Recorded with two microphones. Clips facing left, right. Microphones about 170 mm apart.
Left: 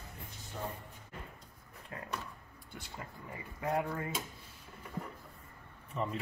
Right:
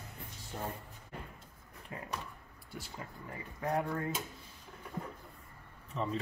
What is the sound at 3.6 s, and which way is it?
Speech, centre (ahead or behind).